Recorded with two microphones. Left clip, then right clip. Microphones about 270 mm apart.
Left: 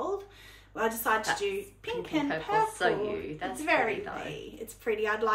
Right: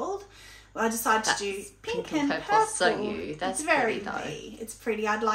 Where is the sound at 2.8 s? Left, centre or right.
Centre.